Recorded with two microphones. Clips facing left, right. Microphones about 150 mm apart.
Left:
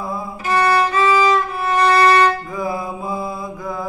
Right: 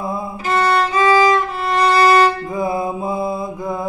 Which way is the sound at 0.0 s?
25° right (ahead or behind).